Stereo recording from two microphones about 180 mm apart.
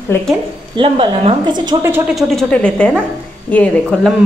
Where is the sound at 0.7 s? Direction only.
30° right (ahead or behind).